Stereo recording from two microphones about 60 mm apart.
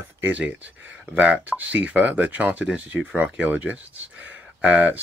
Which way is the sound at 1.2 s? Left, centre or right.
Right.